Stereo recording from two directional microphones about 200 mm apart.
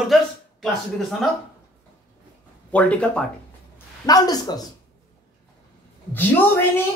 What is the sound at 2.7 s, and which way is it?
Speech, 5° left (ahead or behind).